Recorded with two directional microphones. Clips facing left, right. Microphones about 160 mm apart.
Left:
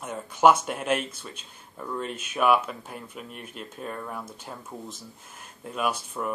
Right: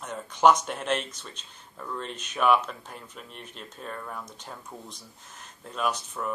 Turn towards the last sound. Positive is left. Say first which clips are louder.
# left 1 dB
turn(degrees=10)  # may be behind; listen again after turning